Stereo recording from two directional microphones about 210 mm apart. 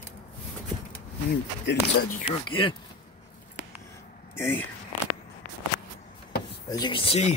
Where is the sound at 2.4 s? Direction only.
25° left (ahead or behind).